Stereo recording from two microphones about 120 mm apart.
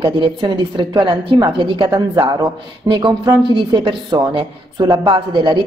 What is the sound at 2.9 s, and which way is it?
A woman's voice, 40° right (ahead or behind).